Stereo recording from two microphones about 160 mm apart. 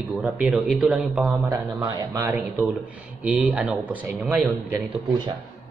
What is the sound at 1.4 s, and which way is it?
Speech, 20° right (ahead or behind).